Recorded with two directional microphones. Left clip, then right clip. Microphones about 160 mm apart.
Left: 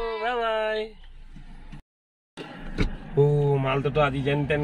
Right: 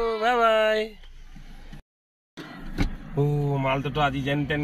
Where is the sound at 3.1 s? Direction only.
15° left (ahead or behind).